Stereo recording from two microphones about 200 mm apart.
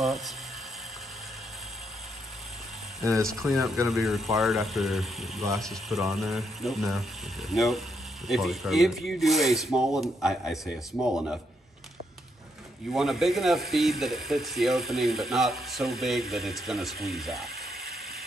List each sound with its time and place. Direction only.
0.0 s speech: centre (ahead or behind)
3.0 s speech: 15° right (ahead or behind)
3.3 s speech: centre (ahead or behind)
12.9 s speech: centre (ahead or behind)